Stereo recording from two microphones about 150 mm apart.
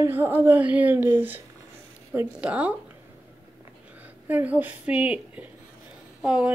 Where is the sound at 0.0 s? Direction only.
15° right (ahead or behind).